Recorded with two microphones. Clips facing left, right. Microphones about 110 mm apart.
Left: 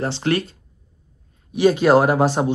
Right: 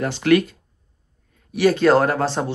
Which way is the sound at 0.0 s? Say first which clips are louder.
Right 4 dB; 30° left (ahead or behind).